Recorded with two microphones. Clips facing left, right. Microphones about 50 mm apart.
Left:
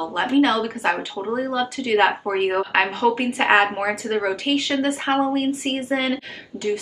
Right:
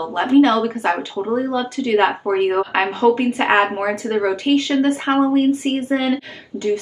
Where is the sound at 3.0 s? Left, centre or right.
Left.